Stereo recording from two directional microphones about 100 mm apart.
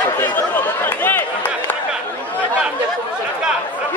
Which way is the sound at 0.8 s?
20° left (ahead or behind).